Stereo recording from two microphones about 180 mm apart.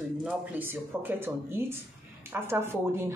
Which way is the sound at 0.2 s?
10° right (ahead or behind).